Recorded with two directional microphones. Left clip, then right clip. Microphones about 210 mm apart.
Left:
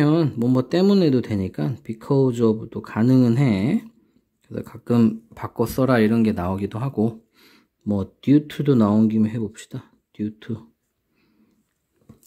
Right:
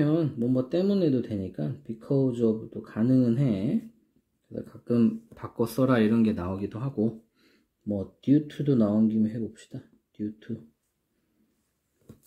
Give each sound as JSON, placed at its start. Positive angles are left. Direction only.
{"t": 0.0, "sound": "speech", "side_deg": 50}